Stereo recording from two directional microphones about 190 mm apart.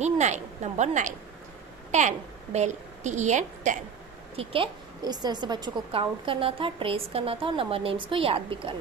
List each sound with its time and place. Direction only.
0.0 s a woman's voice: 40° right (ahead or behind)
4.4 s a woman's voice: 30° right (ahead or behind)